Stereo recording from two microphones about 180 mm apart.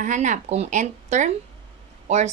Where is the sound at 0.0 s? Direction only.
45° right (ahead or behind).